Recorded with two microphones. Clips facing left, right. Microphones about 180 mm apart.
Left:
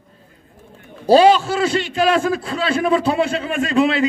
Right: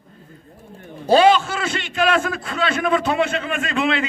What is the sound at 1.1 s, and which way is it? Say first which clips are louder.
A man's voice: left 3 dB; 35° left (ahead or behind).